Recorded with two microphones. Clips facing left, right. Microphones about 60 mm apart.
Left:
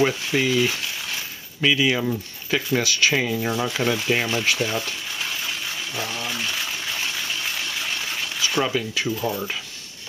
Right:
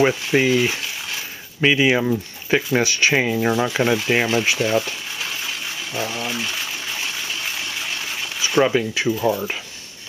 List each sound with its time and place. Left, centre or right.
0.0 s speech: right; by 5.5 s centre
5.9 s gush: centre
8.4 s speech: right